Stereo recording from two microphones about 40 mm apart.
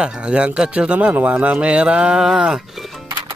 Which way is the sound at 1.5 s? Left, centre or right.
Right.